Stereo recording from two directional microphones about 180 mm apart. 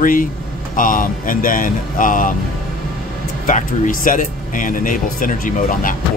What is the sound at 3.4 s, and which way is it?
Speech, 45° left (ahead or behind).